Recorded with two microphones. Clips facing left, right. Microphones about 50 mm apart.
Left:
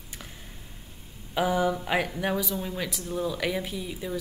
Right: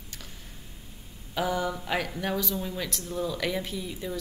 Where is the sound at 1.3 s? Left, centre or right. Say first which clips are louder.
Left 4 dB; centre.